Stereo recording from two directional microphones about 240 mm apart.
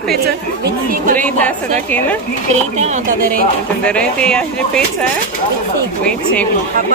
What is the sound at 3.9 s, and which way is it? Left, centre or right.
Speech, centre.